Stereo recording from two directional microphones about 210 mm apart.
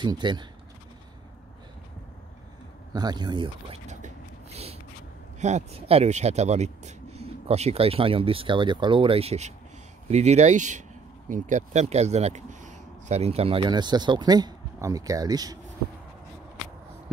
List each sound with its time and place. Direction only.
0.0 s speech: 20° right (ahead or behind)
2.9 s speech: 20° right (ahead or behind)
3.8 s a sound: 35° right (ahead or behind)
5.4 s speech: 30° right (ahead or behind)